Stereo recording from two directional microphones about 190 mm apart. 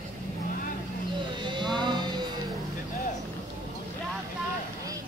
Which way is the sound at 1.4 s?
25° right (ahead or behind).